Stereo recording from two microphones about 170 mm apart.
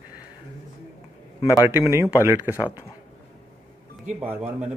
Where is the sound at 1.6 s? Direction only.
15° right (ahead or behind).